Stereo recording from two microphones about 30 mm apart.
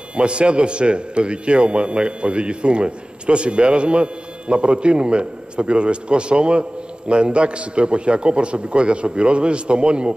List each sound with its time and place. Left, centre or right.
0.1 s a man's voice: right